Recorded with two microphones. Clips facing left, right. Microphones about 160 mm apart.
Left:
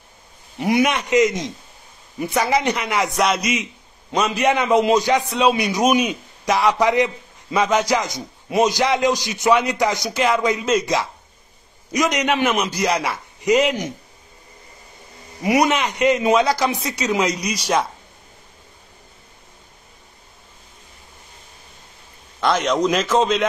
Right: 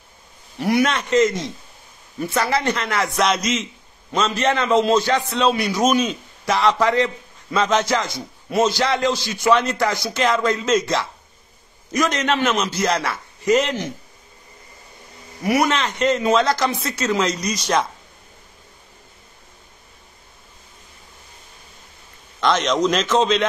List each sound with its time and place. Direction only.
0.6 s a man's voice: 15° left (ahead or behind)
15.4 s a man's voice: 20° left (ahead or behind)
22.4 s a man's voice: 5° left (ahead or behind)